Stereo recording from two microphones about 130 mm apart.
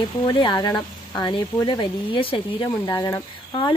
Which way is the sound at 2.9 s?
30° left (ahead or behind).